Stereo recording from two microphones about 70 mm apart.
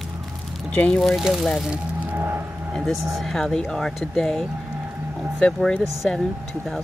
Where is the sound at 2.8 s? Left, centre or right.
Centre.